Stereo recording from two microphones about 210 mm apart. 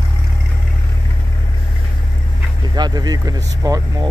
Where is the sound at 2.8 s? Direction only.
20° right (ahead or behind).